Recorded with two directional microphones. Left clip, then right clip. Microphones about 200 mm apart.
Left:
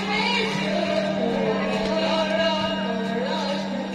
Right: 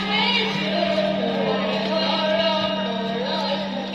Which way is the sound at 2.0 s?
35° right (ahead or behind).